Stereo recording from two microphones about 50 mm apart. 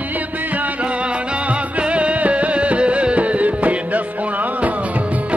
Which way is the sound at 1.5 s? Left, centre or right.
Right.